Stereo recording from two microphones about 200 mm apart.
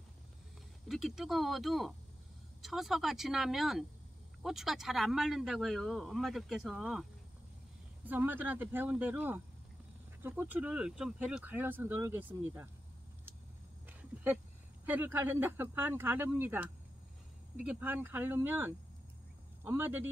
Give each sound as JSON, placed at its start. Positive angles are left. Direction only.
{"t": 0.8, "sound": "speech", "side_deg": 0}
{"t": 14.9, "sound": "speech", "side_deg": -10}